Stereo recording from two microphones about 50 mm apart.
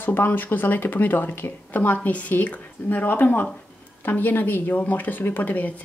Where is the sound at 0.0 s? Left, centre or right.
Left.